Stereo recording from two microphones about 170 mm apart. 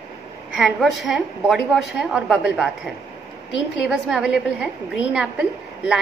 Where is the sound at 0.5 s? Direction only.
5° right (ahead or behind).